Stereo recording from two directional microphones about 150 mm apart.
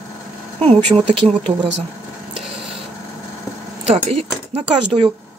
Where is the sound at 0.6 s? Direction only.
40° right (ahead or behind).